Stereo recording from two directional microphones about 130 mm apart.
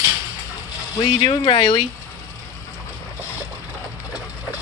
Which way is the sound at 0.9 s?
35° left (ahead or behind).